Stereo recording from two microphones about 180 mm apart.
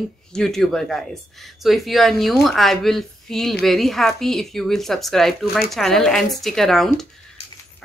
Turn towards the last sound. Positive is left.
turn(degrees=0)  # may be behind; listen again after turning